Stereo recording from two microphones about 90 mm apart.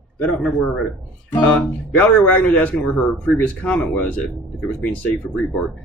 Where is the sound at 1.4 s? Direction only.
15° left (ahead or behind).